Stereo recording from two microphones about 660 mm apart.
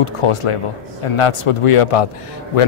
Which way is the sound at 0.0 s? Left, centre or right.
Left.